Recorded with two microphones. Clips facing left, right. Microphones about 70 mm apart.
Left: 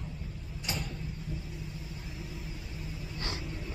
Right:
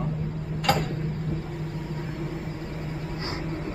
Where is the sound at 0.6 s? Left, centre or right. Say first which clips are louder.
Right 14 dB; right.